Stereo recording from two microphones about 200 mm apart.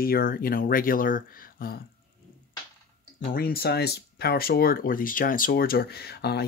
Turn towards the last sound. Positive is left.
turn(degrees=55)  # may be behind; listen again after turning